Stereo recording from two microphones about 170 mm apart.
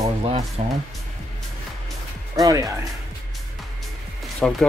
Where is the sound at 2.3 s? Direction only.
20° right (ahead or behind).